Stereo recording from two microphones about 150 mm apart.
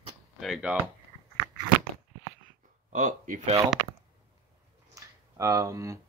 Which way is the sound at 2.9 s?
60° right (ahead or behind).